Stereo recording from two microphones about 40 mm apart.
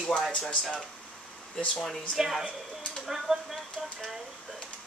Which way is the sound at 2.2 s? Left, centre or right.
Centre.